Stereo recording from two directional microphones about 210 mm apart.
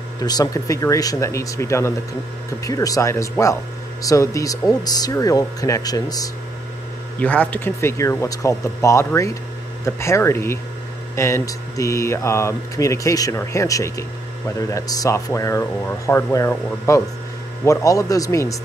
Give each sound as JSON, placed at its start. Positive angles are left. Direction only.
{"t": 0.2, "sound": "speech", "side_deg": 20}